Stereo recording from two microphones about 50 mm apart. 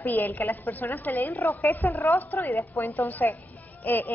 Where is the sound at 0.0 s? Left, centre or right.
Left.